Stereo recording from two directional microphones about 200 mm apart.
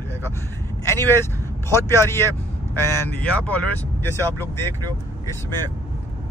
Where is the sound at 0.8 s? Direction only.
10° left (ahead or behind).